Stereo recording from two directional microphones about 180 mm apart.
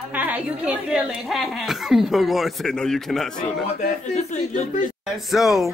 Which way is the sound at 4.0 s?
40° left (ahead or behind).